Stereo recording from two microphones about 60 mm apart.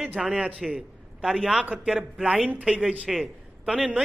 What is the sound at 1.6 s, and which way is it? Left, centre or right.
Speech, right.